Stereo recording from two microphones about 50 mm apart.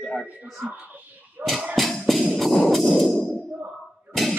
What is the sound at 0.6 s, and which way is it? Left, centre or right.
Sneeze, right.